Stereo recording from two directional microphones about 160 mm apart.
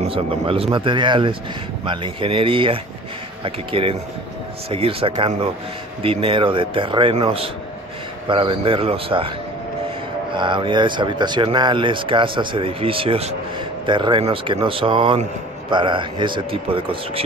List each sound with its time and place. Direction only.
0.0 s speech: 35° right (ahead or behind)
10.3 s speech: 30° right (ahead or behind)